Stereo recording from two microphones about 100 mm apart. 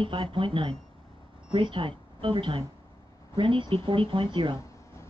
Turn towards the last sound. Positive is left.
turn(degrees=-55)  # may be behind; listen again after turning